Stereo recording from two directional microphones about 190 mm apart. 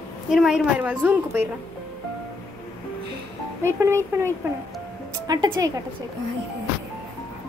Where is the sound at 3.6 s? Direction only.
15° right (ahead or behind).